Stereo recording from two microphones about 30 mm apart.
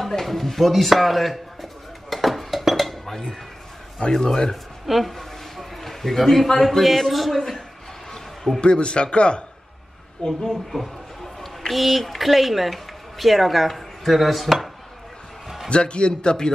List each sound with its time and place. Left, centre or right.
0.2 s a sound: centre
4.1 s a man's voice: left
4.8 s speech: centre
5.1 s a sound: centre
6.8 s speech: centre
8.5 s a man's voice: left
10.5 s speech: centre
15.4 s basketball bounce: centre
15.7 s a man's voice: left